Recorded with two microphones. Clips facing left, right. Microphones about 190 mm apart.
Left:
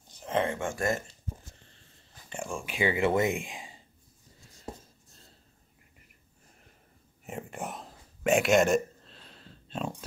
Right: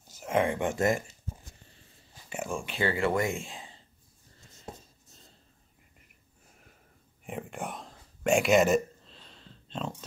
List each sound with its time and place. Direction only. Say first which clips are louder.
0.0 s speech: right 2 dB; 5° right (ahead or behind)
2.2 s speech: right 2 dB; 5° right (ahead or behind)
2.6 s speech: left 2 dB; 15° left (ahead or behind)
4.4 s a sound: right 1 dB; centre (ahead or behind)
7.2 s whispering: right 1 dB; centre (ahead or behind)